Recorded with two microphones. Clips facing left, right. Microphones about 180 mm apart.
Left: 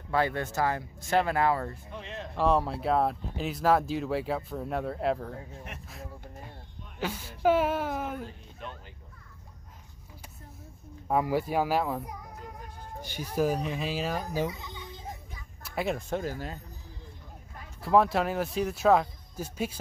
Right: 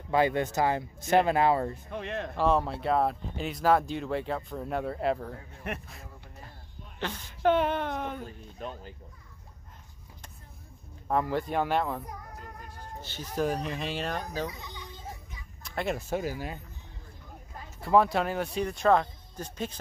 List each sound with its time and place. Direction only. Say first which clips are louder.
0.1 s speech: right 3 dB; 15° right (ahead or behind)
1.9 s speech: right 5 dB; 60° right (ahead or behind)
2.3 s speech: left 1 dB; centre (ahead or behind)
5.7 s speech: right 9 dB; 60° right (ahead or behind)
7.0 s speech: left 1 dB; 5° left (ahead or behind)
8.6 s speech: right 4 dB; 40° right (ahead or behind)
11.1 s speech: left 1 dB; 10° left (ahead or behind)
15.6 s speech: left 1 dB; 5° left (ahead or behind)
17.7 s speech: even; centre (ahead or behind)